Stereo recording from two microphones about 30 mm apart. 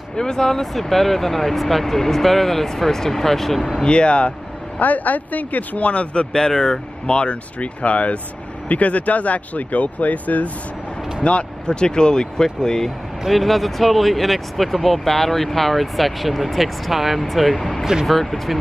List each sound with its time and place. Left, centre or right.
0.1 s speech: left
0.7 s speech: centre
3.8 s speech: left
4.7 s speech: left
5.8 s speech: left
11.2 s speech: left
13.3 s speech: centre